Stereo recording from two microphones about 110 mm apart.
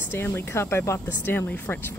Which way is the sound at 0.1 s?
20° left (ahead or behind).